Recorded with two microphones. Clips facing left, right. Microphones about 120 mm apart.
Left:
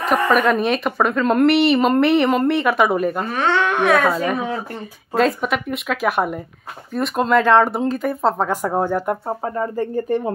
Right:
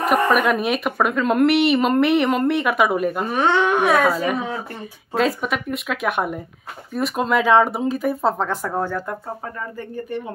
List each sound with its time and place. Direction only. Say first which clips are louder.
0.3 s a woman's voice: left 2 dB; 5° right (ahead or behind)
3.3 s a woman's voice: right 1 dB; 15° right (ahead or behind)
8.5 s speech: left 4 dB; 20° left (ahead or behind)
9.4 s speech: left 9 dB; 35° left (ahead or behind)